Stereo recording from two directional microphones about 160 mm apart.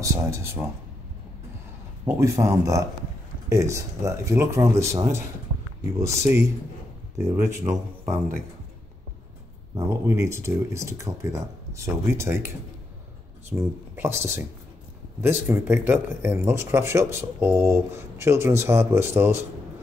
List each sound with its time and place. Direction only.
0.0 s speech: 20° right (ahead or behind)
2.0 s speech: 20° right (ahead or behind)
9.8 s speech: 15° right (ahead or behind)